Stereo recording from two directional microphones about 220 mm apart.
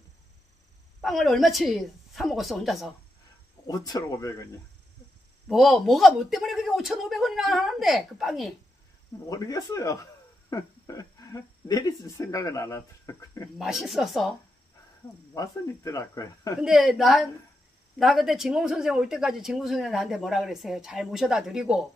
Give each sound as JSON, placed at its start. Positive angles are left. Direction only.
{"t": 1.0, "sound": "speech", "side_deg": 0}
{"t": 3.6, "sound": "speech", "side_deg": 15}
{"t": 5.5, "sound": "speech", "side_deg": 0}
{"t": 9.3, "sound": "speech", "side_deg": 15}
{"t": 13.6, "sound": "speech", "side_deg": 0}
{"t": 15.3, "sound": "speech", "side_deg": 15}
{"t": 16.5, "sound": "speech", "side_deg": 0}